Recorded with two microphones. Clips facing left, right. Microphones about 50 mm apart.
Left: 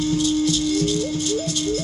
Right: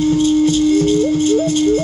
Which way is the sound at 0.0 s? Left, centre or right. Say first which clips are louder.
Right 7 dB; right.